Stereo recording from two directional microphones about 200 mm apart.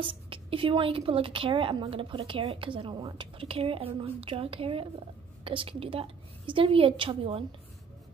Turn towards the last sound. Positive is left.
turn(degrees=-30)  # may be behind; listen again after turning